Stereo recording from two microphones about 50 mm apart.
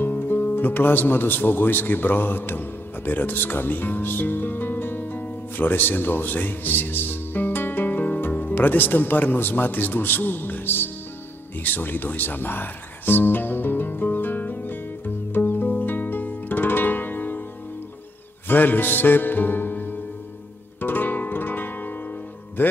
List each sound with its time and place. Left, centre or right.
0.0 s music: left
0.6 s speech: left
15.3 s music: left
18.5 s music: left